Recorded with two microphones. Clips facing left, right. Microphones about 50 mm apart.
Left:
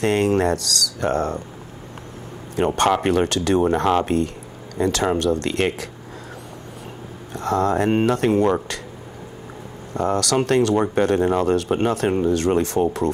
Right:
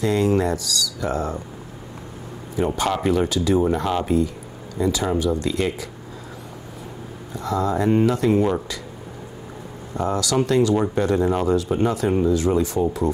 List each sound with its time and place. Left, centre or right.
0.0 s speech: left
2.5 s speech: left
7.3 s speech: left
9.9 s speech: left